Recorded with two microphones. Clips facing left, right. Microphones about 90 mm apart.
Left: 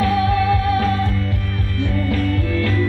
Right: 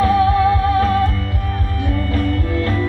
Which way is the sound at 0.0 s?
25° right (ahead or behind).